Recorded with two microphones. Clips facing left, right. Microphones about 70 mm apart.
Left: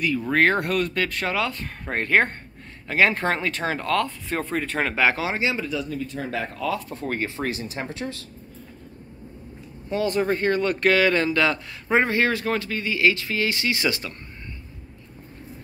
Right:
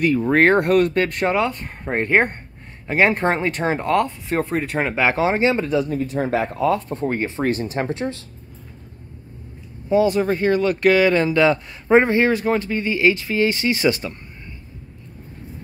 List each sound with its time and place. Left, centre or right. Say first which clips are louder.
0.0 s speech: right 5 dB; right
7.1 s speech: right 4 dB; right
7.4 s speech: right 7 dB; right
9.8 s speech: right 6 dB; centre